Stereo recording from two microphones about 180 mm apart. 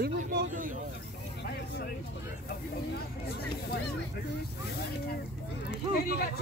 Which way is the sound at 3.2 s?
65° left (ahead or behind).